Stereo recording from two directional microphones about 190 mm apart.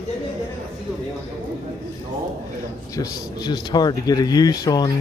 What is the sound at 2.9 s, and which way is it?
A man's voice, 20° left (ahead or behind).